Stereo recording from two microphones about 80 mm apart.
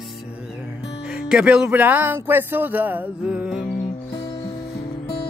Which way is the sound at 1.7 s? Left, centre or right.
Right.